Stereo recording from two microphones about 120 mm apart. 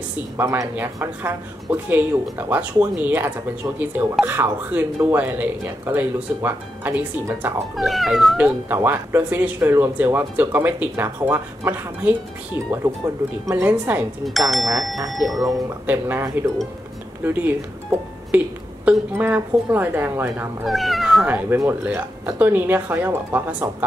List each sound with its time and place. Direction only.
0.4 s speech: 20° right (ahead or behind)
7.7 s speech: centre (ahead or behind)
8.4 s speech: 15° right (ahead or behind)
13.5 s speech: 15° right (ahead or behind)
14.2 s speech: centre (ahead or behind)
15.9 s speech: 20° right (ahead or behind)
20.6 s speech: centre (ahead or behind)
21.3 s speech: 15° right (ahead or behind)